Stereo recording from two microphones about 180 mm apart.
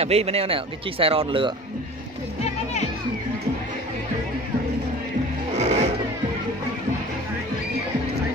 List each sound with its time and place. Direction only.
0.0 s speech: 35° right (ahead or behind)
5.6 s music: 35° right (ahead or behind)